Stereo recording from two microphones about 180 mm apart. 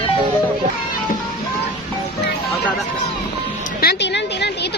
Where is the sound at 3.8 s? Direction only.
65° left (ahead or behind).